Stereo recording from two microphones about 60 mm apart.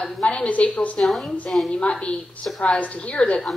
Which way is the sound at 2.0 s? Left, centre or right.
Centre.